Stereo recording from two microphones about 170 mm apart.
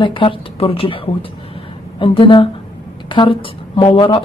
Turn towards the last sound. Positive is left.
turn(degrees=30)  # may be behind; listen again after turning